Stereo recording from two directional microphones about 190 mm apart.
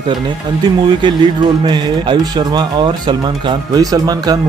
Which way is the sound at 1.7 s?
25° right (ahead or behind).